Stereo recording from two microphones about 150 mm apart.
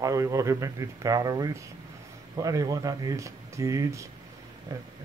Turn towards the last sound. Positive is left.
turn(degrees=-25)  # may be behind; listen again after turning